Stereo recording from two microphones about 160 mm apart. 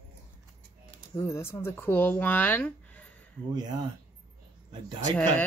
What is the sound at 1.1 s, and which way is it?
A woman's voice, 15° left (ahead or behind).